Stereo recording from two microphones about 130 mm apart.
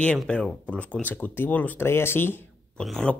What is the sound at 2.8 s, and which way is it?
Speech, 5° left (ahead or behind).